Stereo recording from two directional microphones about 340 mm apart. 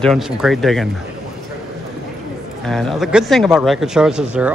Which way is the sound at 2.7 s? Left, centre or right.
Centre.